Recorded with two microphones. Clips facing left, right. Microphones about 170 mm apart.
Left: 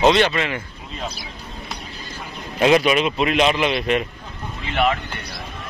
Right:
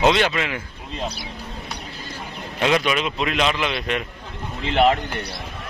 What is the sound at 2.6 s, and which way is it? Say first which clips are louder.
A man's voice: left 5 dB; 5° left (ahead or behind).